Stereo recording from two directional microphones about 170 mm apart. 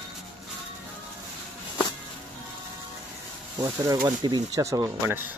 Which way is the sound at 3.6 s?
20° right (ahead or behind).